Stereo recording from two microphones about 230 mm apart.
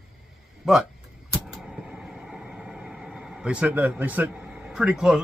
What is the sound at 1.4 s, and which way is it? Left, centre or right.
Vehicle, centre.